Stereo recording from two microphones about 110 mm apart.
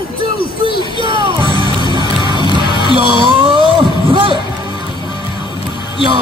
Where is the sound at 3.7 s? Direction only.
50° right (ahead or behind).